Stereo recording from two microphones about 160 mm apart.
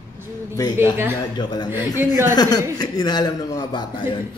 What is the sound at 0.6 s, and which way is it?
Speech, 25° left (ahead or behind).